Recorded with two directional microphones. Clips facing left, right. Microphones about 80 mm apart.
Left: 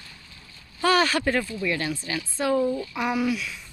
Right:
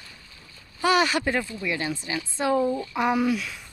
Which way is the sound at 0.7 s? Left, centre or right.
Centre.